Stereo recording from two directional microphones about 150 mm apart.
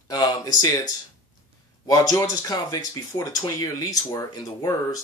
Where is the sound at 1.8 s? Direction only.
25° left (ahead or behind).